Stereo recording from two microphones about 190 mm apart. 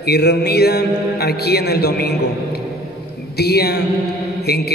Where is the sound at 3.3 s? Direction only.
55° left (ahead or behind).